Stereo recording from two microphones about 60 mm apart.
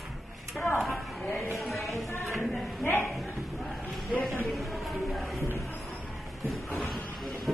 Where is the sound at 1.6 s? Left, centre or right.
Centre.